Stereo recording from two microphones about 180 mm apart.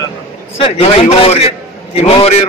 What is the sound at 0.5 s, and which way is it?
A man's voice, 35° left (ahead or behind).